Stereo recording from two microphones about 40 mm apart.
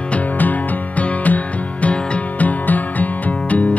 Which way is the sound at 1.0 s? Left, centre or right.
Left.